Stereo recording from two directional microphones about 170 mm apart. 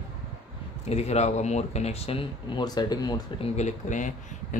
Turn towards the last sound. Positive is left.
turn(degrees=45)  # may be behind; listen again after turning